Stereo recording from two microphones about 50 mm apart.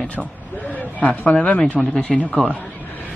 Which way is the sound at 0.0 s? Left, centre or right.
Left.